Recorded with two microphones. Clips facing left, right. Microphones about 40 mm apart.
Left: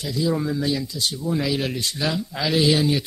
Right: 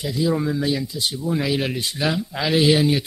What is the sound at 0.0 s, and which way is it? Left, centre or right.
Speech, centre.